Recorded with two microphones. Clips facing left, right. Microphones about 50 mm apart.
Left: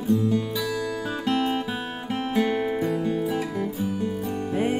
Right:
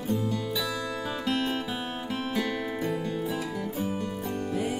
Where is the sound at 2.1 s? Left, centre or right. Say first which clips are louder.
Left 7 dB; left.